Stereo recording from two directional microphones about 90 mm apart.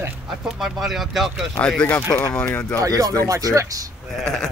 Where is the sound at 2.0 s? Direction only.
45° left (ahead or behind).